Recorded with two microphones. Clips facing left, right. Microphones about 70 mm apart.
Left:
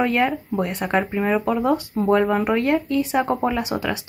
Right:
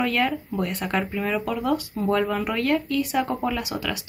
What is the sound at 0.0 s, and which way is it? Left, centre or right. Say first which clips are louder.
Speech: left 3 dB; left.